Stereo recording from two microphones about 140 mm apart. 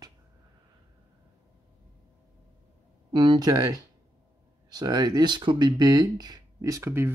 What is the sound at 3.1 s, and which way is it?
Speech, 35° right (ahead or behind).